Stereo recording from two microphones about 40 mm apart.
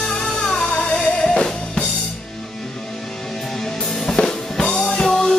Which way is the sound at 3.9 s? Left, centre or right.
Centre.